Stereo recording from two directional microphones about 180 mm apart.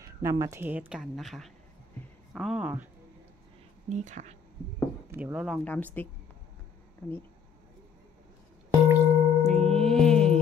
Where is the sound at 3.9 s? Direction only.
40° right (ahead or behind).